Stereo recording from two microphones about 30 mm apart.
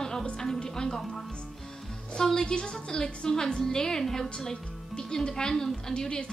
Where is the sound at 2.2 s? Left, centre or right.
Left.